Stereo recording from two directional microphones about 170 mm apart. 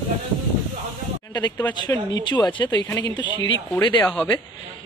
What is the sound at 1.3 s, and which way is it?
Speech, 25° left (ahead or behind).